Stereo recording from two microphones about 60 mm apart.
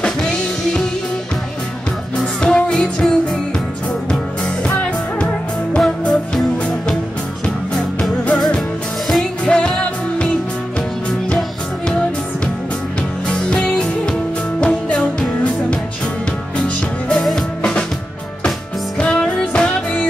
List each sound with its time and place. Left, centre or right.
0.0 s music: centre
2.1 s music: centre
8.5 s music: centre
9.4 s music: centre
11.3 s music: centre
13.3 s music: centre
18.9 s music: centre